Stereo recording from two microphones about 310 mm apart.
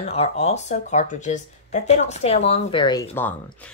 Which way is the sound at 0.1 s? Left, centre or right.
Centre.